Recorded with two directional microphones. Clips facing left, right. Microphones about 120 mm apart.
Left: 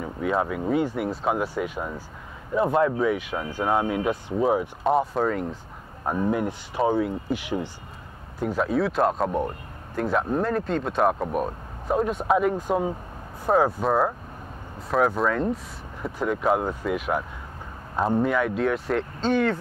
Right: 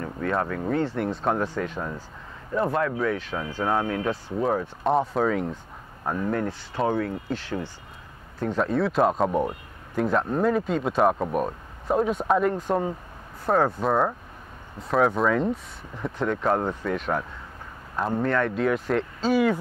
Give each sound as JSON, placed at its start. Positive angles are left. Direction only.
{"t": 0.0, "sound": "speech", "side_deg": 10}
{"t": 6.0, "sound": "speech", "side_deg": 15}